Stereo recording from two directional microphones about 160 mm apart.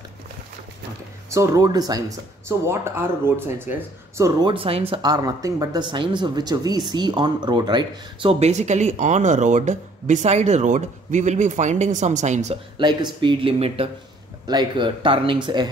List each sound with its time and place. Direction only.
1.3 s speech: 20° right (ahead or behind)
4.4 s speech: 30° right (ahead or behind)
12.7 s speech: 30° right (ahead or behind)